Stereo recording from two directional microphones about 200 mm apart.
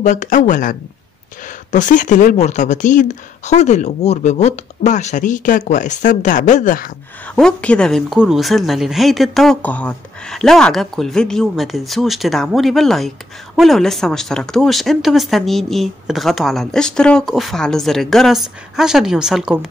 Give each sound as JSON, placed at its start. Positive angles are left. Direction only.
{"t": 0.0, "sound": "speech", "side_deg": 35}
{"t": 7.3, "sound": "speech", "side_deg": 5}